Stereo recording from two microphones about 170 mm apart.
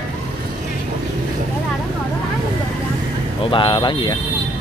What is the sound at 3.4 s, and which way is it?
Speech, 30° left (ahead or behind).